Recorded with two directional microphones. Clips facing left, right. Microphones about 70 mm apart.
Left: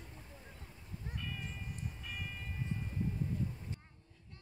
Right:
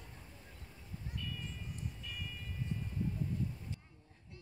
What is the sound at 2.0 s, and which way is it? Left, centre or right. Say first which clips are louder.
Train: left 2 dB; left.